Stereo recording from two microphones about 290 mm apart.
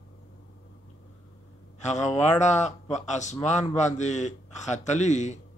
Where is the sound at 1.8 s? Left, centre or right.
Left.